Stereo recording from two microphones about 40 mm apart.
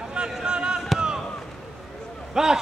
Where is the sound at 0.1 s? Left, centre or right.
Centre.